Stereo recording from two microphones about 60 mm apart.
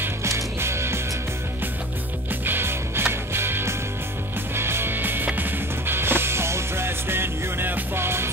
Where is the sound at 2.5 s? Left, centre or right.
Right.